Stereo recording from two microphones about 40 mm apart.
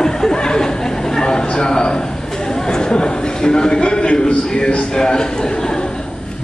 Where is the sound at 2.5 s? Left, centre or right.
Centre.